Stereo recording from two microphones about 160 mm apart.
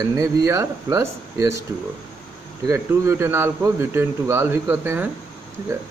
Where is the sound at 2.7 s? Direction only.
15° right (ahead or behind).